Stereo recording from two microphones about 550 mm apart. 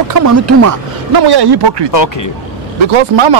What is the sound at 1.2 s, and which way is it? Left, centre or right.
Speech, right.